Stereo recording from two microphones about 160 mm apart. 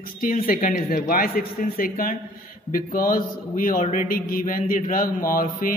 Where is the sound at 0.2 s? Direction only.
60° left (ahead or behind).